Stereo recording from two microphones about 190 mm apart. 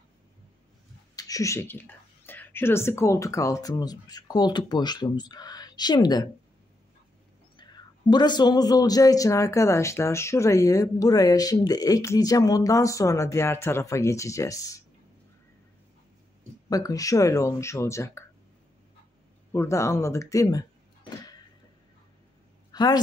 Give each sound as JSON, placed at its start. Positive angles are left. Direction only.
{"t": 1.1, "sound": "speech", "side_deg": 20}
{"t": 7.5, "sound": "speech", "side_deg": 20}
{"t": 16.6, "sound": "speech", "side_deg": 20}
{"t": 19.5, "sound": "speech", "side_deg": 15}
{"t": 22.7, "sound": "a sound", "side_deg": 20}